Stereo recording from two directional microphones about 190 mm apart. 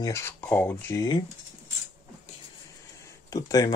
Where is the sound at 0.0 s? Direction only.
15° left (ahead or behind).